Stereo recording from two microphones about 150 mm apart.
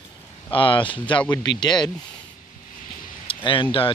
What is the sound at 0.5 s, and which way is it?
Speech, 35° left (ahead or behind).